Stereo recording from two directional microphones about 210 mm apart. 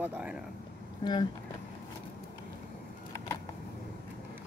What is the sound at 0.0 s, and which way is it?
Speech, 5° right (ahead or behind).